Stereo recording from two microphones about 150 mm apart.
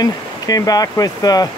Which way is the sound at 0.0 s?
25° left (ahead or behind).